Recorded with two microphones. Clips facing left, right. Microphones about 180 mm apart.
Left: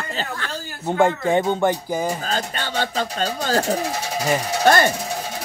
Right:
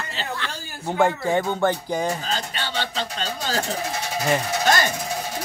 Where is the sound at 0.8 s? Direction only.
15° left (ahead or behind).